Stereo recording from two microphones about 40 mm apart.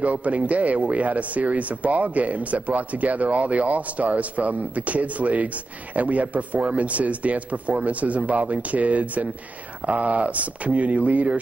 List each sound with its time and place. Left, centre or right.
0.0 s speech: right